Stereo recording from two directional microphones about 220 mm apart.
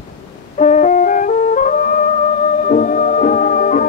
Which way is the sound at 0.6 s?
35° left (ahead or behind).